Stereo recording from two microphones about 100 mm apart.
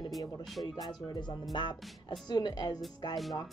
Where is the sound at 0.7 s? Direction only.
45° left (ahead or behind).